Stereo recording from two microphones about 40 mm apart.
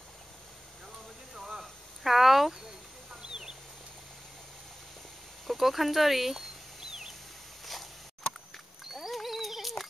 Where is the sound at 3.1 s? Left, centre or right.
Centre.